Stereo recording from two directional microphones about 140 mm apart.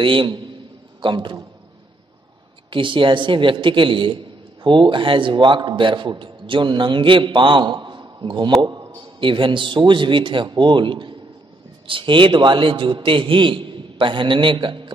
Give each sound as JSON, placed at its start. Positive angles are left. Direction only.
{"t": 0.0, "sound": "a man's voice", "side_deg": -35}
{"t": 2.7, "sound": "a man's voice", "side_deg": -35}